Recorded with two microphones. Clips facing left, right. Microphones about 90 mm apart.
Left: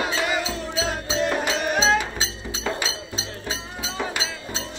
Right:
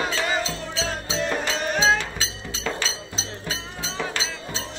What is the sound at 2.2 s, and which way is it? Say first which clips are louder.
Music: left 2 dB; 15° left (ahead or behind).